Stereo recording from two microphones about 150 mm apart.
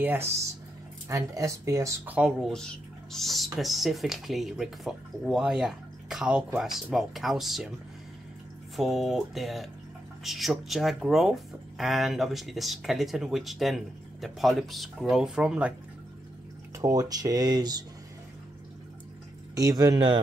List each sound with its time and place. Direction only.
0.0 s speech: 15° right (ahead or behind)
2.1 s speech: centre (ahead or behind)
8.7 s speech: centre (ahead or behind)
16.7 s speech: 25° right (ahead or behind)
19.5 s speech: 25° right (ahead or behind)